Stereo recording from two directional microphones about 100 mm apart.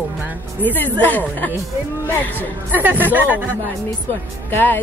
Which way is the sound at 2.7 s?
20° right (ahead or behind).